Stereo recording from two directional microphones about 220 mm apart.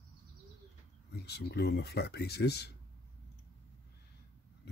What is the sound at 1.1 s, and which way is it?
Speech, 45° left (ahead or behind).